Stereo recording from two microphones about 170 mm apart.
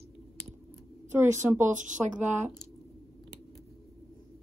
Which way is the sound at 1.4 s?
10° right (ahead or behind).